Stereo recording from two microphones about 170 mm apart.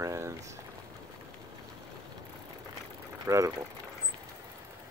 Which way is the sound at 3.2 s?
20° right (ahead or behind).